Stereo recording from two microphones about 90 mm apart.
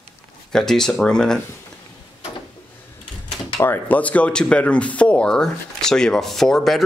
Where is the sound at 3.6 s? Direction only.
20° left (ahead or behind); by 6.9 s centre (ahead or behind).